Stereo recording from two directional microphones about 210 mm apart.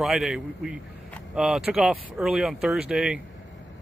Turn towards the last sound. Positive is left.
turn(degrees=-5)  # may be behind; listen again after turning